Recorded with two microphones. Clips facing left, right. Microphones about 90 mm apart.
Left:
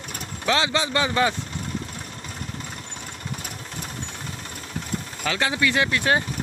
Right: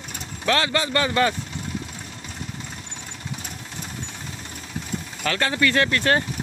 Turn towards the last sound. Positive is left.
turn(degrees=15)  # may be behind; listen again after turning